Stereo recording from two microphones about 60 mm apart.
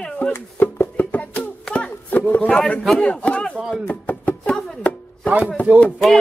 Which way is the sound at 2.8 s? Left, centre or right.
Centre.